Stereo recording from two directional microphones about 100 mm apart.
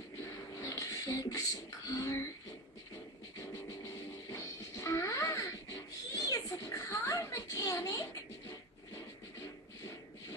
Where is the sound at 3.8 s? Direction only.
30° left (ahead or behind).